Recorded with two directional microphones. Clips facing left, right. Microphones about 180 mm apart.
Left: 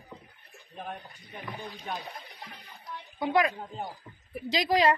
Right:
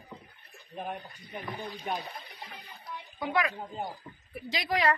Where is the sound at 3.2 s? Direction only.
30° left (ahead or behind).